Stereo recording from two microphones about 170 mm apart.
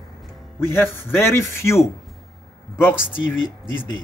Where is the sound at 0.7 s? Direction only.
15° left (ahead or behind).